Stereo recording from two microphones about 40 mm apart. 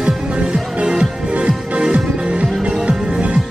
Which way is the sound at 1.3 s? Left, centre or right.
Right.